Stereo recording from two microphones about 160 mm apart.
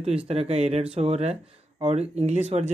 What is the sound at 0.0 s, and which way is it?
Speech, 40° right (ahead or behind).